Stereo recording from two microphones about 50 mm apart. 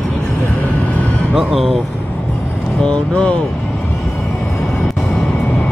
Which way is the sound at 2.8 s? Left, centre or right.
Left.